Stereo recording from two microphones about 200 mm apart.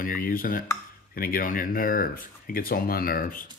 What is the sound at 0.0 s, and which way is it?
Speech, 45° left (ahead or behind).